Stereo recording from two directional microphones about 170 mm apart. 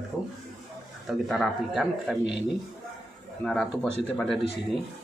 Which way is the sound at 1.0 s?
Centre (ahead or behind).